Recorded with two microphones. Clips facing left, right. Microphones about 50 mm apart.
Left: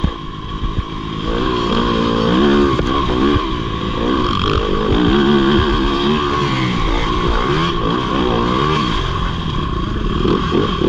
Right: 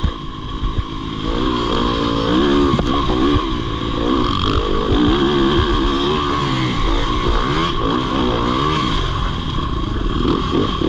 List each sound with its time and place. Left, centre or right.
1.4 s vehicle: left
2.2 s vehicle: left
4.0 s a sound: left
4.6 s vehicle: centre
10.2 s vehicle: left